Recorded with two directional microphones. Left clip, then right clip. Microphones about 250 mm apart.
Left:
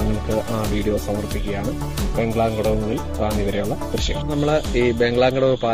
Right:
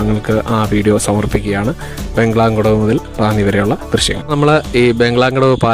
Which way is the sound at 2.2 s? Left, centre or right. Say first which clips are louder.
Right 8 dB; right.